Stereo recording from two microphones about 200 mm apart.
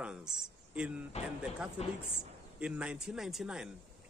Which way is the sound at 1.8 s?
30° left (ahead or behind).